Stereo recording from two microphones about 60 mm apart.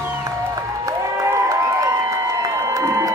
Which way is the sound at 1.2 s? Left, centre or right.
Right.